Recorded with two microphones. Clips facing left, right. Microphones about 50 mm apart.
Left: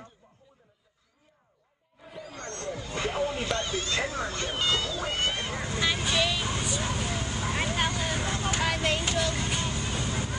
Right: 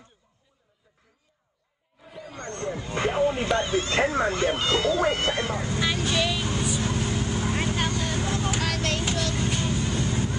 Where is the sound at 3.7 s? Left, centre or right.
Right.